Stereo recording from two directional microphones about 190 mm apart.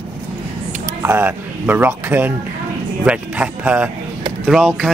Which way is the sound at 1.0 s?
10° right (ahead or behind).